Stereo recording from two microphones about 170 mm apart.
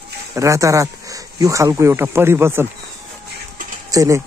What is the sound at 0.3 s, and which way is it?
Speech, 20° right (ahead or behind).